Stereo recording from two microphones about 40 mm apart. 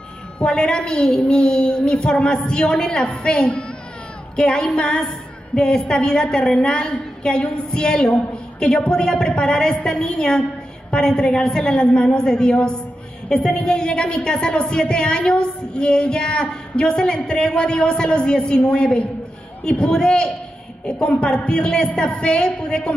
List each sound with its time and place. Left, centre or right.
0.4 s a woman's voice: left